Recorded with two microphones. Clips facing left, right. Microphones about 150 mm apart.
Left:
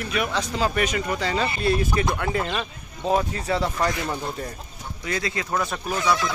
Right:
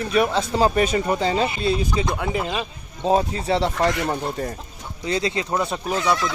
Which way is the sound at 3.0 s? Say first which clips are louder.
Right 3 dB; 30° right (ahead or behind).